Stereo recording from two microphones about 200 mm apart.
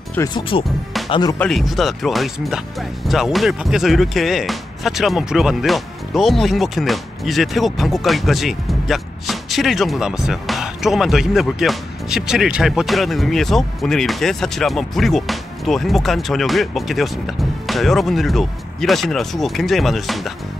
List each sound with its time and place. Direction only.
0.3 s speech: 25° left (ahead or behind)
1.4 s speech: centre (ahead or behind)